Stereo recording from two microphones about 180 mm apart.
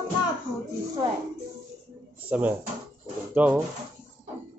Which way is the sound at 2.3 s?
10° right (ahead or behind).